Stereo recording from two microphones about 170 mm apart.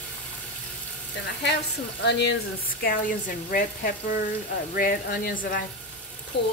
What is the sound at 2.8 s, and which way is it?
Speech, 55° left (ahead or behind).